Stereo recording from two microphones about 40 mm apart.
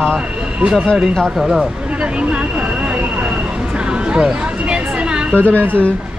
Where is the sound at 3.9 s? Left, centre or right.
Right.